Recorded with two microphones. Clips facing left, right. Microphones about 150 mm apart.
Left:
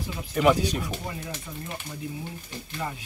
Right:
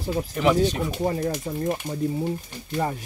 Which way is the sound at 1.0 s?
45° right (ahead or behind).